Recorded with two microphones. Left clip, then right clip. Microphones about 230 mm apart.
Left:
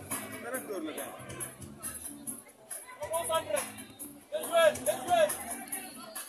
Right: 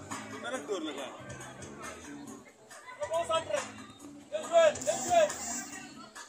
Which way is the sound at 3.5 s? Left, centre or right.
Left.